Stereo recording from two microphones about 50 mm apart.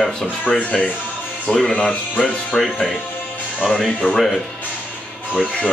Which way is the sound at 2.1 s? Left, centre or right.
Left.